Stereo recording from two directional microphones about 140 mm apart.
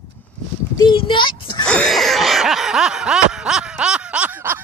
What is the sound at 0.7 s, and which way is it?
Speech, 35° left (ahead or behind).